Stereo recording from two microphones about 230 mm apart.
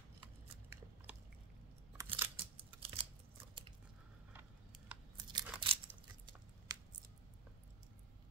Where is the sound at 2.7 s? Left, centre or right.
Right.